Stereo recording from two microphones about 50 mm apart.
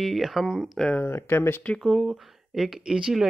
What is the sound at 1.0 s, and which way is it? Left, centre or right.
Speech, left.